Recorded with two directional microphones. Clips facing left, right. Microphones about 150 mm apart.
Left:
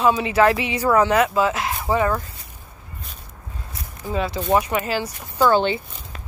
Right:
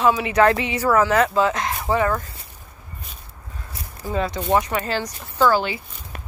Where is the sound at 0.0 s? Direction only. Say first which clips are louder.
Even; 25° left (ahead or behind).